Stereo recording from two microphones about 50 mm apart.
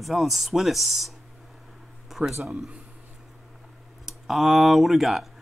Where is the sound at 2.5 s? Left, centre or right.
Centre.